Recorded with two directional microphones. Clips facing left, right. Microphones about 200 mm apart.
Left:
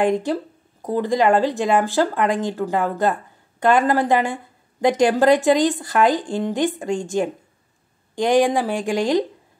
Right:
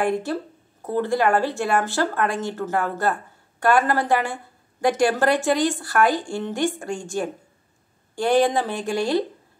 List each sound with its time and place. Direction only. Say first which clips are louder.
0.0 s speech: left 4 dB; 15° left (ahead or behind)
8.2 s speech: left 2 dB; 15° left (ahead or behind)